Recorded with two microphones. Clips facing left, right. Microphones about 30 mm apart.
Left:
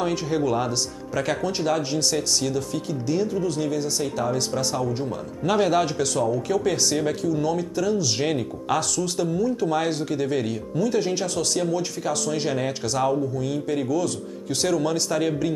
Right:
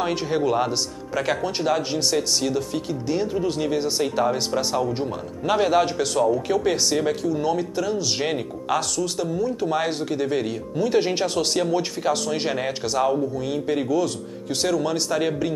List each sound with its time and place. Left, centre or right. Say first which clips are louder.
0.0 s speech: right 1 dB; centre
5.4 s speech: right 1 dB; centre
10.8 s speech: right 3 dB; right; by 15.5 s centre